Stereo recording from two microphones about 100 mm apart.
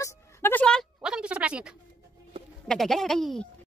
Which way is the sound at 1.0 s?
10° right (ahead or behind).